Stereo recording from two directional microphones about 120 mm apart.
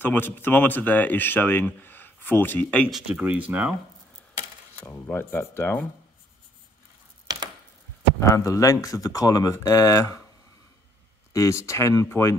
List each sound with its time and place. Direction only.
0.0 s speech: 15° left (ahead or behind)
2.9 s speech: 5° right (ahead or behind)
4.8 s speech: 20° left (ahead or behind)
8.2 s speech: 25° left (ahead or behind)
11.3 s speech: 25° left (ahead or behind)